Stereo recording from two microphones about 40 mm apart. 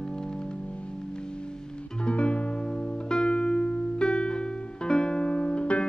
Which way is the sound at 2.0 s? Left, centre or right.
Left.